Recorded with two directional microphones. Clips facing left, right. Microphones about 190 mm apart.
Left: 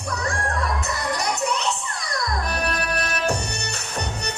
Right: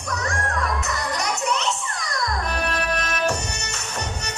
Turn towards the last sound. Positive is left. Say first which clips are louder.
# even
turn(degrees=35)  # may be behind; listen again after turning